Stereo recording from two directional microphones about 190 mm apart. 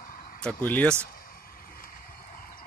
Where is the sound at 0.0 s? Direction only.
45° left (ahead or behind).